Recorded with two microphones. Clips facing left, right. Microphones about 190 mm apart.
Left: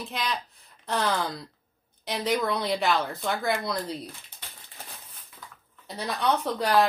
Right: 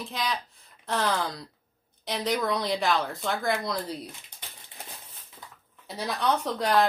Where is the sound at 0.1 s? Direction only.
Centre (ahead or behind).